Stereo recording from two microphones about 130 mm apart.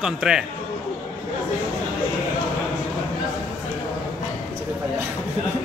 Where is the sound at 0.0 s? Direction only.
5° right (ahead or behind).